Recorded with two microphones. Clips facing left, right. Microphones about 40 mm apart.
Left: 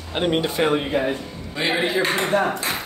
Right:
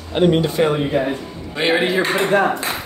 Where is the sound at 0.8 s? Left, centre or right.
Centre.